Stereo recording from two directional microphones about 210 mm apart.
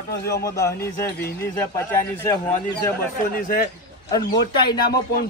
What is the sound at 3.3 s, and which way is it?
Speech, 40° left (ahead or behind).